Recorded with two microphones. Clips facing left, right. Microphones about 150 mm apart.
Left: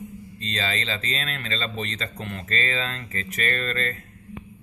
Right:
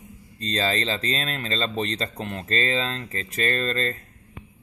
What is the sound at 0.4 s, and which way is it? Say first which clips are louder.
Speech: right 5 dB; 40° right (ahead or behind).